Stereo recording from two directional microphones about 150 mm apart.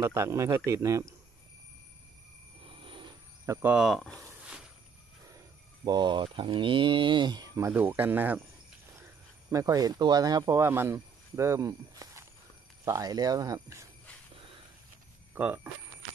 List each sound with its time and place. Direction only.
0.0 s speech: 20° right (ahead or behind)
2.8 s a sound: 35° right (ahead or behind)
3.7 s a sound: centre (ahead or behind)
5.9 s speech: 30° right (ahead or behind); by 8.4 s 15° right (ahead or behind)
9.5 s speech: 25° right (ahead or behind)
15.3 s speech: 10° right (ahead or behind)